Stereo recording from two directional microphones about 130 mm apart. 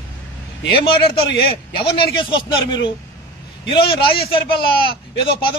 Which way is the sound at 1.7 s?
40° left (ahead or behind).